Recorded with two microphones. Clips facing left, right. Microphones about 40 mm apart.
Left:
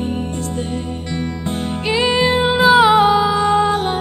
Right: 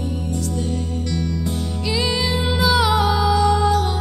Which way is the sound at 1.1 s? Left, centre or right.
Left.